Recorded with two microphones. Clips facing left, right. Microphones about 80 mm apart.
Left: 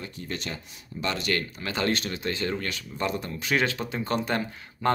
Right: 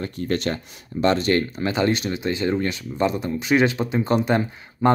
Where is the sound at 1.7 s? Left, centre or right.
Centre.